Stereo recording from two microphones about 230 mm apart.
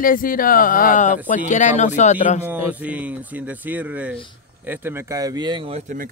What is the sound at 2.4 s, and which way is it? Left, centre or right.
Speech, centre.